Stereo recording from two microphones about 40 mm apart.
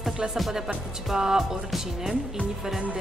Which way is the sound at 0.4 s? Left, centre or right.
Centre.